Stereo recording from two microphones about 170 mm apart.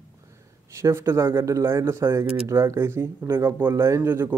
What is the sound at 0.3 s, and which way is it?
A man's voice, 15° right (ahead or behind).